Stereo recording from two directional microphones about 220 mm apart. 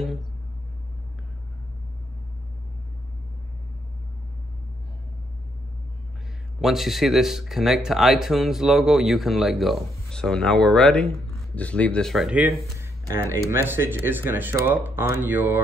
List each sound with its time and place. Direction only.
6.6 s speech: centre (ahead or behind)